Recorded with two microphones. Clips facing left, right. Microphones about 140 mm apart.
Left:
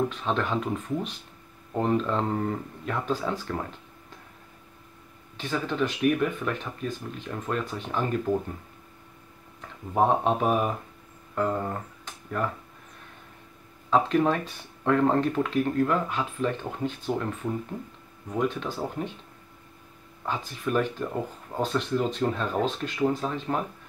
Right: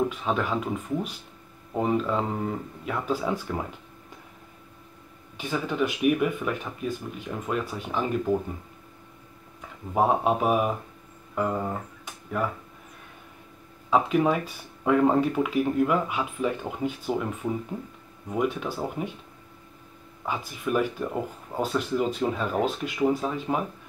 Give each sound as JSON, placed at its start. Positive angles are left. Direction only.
{"t": 0.1, "sound": "speech", "side_deg": -5}
{"t": 5.4, "sound": "speech", "side_deg": -10}
{"t": 9.6, "sound": "speech", "side_deg": -5}
{"t": 13.8, "sound": "speech", "side_deg": -10}
{"t": 20.2, "sound": "speech", "side_deg": -10}